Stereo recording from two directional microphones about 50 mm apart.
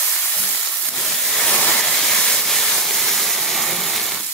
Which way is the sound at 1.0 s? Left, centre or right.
Centre.